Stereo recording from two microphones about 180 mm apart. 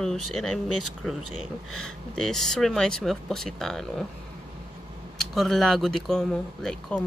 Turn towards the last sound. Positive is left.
turn(degrees=5)  # may be behind; listen again after turning